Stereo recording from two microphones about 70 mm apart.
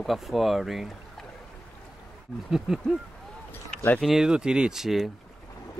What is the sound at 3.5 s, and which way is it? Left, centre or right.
Run, left.